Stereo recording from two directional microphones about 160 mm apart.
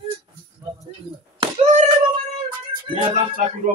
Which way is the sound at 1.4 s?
45° right (ahead or behind).